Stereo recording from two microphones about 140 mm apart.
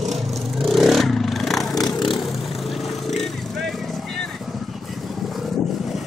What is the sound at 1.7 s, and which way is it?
Vehicle, 25° left (ahead or behind).